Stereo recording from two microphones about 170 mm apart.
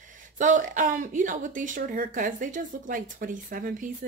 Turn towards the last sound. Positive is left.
turn(degrees=-55)  # may be behind; listen again after turning